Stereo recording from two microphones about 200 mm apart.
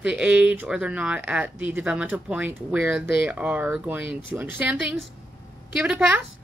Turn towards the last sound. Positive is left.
turn(degrees=-5)  # may be behind; listen again after turning